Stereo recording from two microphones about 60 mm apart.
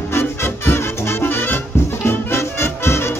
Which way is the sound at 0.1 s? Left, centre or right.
Left.